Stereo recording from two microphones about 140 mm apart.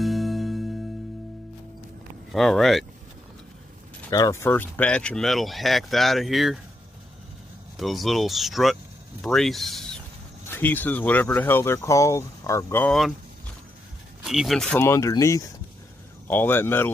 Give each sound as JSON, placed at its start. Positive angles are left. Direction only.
{"t": 0.0, "sound": "music", "side_deg": 0}
{"t": 2.3, "sound": "speech", "side_deg": 0}
{"t": 4.1, "sound": "speech", "side_deg": 25}
{"t": 7.7, "sound": "speech", "side_deg": 0}
{"t": 10.5, "sound": "speech", "side_deg": 10}
{"t": 12.8, "sound": "speech", "side_deg": 0}
{"t": 14.2, "sound": "speech", "side_deg": 0}
{"t": 14.8, "sound": "speech", "side_deg": 20}